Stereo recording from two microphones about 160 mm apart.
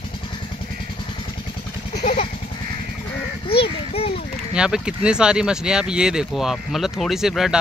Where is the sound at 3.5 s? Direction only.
35° left (ahead or behind).